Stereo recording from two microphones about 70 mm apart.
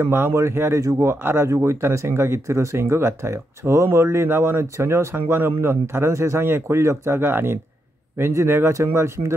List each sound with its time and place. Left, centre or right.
0.0 s speech: right